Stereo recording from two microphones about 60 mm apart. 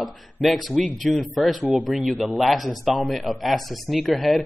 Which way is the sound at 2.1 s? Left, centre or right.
Centre.